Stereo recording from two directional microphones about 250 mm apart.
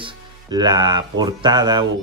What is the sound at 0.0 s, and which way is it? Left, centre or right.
Speech, centre.